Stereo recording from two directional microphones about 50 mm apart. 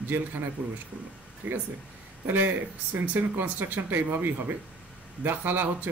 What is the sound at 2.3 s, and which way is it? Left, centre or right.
Speech, right.